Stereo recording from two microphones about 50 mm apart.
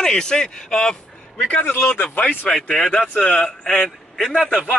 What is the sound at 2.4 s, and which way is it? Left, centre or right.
Speech, centre.